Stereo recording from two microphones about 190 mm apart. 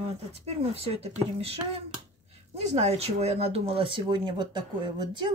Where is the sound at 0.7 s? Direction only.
30° right (ahead or behind).